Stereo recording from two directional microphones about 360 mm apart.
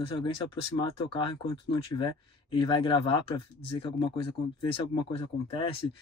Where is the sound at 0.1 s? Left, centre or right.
Centre.